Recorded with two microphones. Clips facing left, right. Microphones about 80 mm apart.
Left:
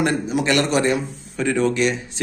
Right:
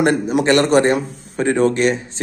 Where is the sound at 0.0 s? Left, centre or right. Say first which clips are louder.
Right 5 dB; right.